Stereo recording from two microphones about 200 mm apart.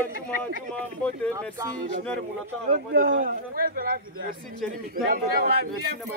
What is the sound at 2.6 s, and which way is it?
Speech, 45° right (ahead or behind).